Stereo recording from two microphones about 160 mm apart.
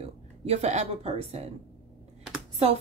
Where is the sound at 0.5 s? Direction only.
45° right (ahead or behind).